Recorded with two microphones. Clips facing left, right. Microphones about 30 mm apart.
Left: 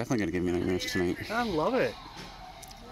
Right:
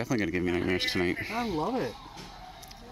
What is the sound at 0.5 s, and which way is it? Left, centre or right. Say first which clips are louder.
Speech: right 1 dB; right.